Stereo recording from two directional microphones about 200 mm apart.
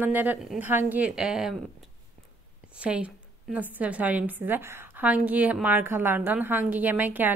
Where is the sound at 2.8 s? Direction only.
5° right (ahead or behind).